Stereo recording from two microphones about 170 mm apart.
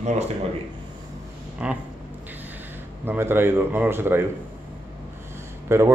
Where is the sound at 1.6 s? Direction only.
5° right (ahead or behind).